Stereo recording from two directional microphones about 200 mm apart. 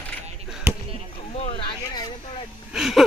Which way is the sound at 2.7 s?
Centre (ahead or behind).